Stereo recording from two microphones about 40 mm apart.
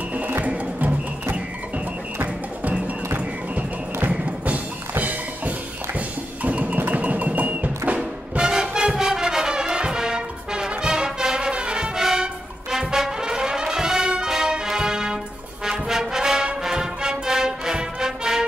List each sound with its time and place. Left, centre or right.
0.7 s music: right
4.5 s music: right
8.4 s brass instrument: centre
12.0 s music: centre
15.6 s brass instrument: centre
16.6 s music: centre